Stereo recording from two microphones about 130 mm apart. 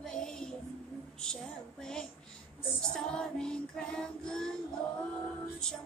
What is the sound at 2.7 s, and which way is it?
Female singing, 5° left (ahead or behind).